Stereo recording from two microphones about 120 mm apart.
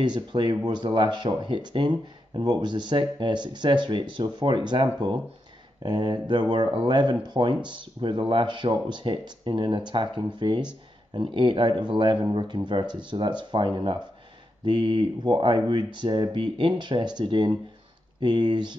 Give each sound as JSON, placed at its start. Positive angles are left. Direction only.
{"t": 0.0, "sound": "speech", "side_deg": -40}